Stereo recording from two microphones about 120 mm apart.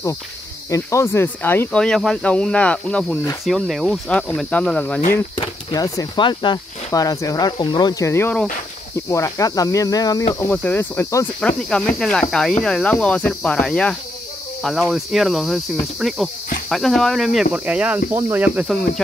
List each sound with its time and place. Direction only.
0.7 s speech: 25° left (ahead or behind)
1.8 s speech: 5° left (ahead or behind)
4.5 s speech: 10° left (ahead or behind)
5.3 s speech: 40° left (ahead or behind)
6.1 s speech: 40° left (ahead or behind)
8.0 s speech: 20° left (ahead or behind)
10.5 s speech: 15° left (ahead or behind)
11.4 s speech: 5° left (ahead or behind)
17.6 s speech: 10° right (ahead or behind)